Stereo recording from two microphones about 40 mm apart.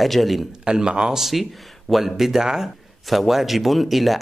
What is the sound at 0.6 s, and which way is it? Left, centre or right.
Speech, centre.